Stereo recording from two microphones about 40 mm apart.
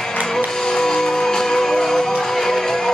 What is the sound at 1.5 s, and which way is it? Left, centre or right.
Music, centre.